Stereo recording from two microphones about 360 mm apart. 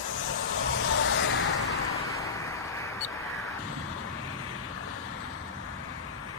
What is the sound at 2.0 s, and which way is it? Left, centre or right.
Vehicle, centre.